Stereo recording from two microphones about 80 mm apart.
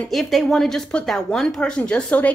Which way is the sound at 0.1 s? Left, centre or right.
Centre.